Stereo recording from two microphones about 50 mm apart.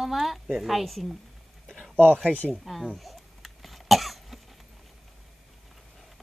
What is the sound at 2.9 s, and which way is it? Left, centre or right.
Cough, centre.